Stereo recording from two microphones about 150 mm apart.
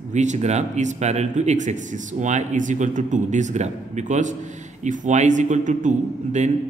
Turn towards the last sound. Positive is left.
turn(degrees=-55)  # may be behind; listen again after turning